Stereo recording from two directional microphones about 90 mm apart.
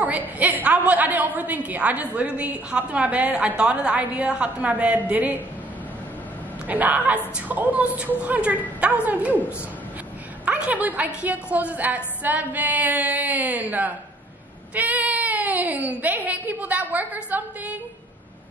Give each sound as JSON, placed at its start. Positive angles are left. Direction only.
{"t": 0.4, "sound": "a woman's voice", "side_deg": -15}
{"t": 6.7, "sound": "a woman's voice", "side_deg": -20}
{"t": 10.4, "sound": "a woman's voice", "side_deg": -15}